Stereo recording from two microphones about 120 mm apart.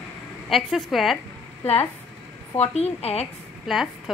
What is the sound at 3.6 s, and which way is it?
Speech, centre (ahead or behind).